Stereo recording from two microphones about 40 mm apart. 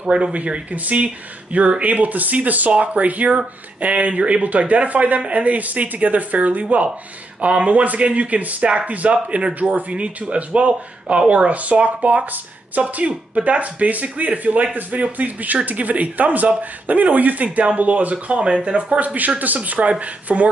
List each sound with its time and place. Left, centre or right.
0.0 s speech: right
0.3 s speech: right
8.6 s speech: right
8.9 s speech: right
20.3 s speech: right